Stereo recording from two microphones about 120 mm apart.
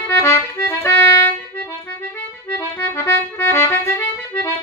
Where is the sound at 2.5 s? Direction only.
20° left (ahead or behind).